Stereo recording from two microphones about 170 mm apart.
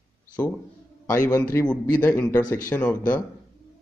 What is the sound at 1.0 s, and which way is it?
A man's voice, 20° left (ahead or behind).